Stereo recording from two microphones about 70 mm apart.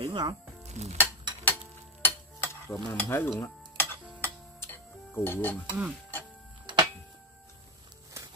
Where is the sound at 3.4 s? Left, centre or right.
Left.